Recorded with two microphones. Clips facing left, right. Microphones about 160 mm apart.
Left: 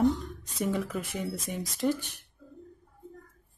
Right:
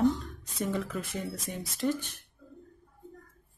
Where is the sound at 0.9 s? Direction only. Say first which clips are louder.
Left 2 dB; 15° left (ahead or behind).